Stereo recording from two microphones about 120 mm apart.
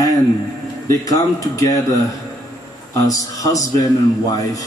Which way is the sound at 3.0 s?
30° left (ahead or behind).